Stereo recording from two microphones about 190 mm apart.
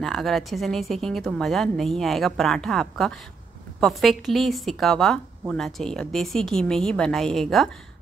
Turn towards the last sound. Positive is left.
turn(degrees=0)  # may be behind; listen again after turning